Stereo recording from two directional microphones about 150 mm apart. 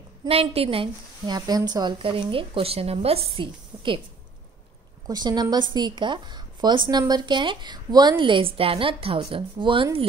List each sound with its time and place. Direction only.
0.3 s a woman's voice: 40° right (ahead or behind)
5.0 s a woman's voice: 25° right (ahead or behind)